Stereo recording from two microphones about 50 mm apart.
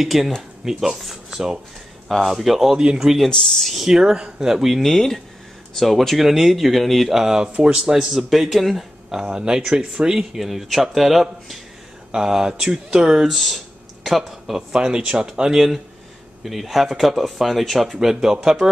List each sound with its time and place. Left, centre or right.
0.0 s speech: centre
2.0 s speech: centre
3.3 s speech: centre; by 7.9 s right
7.9 s speech: centre
14.7 s speech: centre